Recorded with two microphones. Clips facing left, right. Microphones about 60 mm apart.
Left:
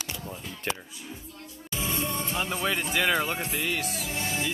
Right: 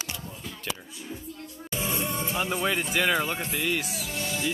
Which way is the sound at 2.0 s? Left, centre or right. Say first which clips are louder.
Right 1 dB; centre.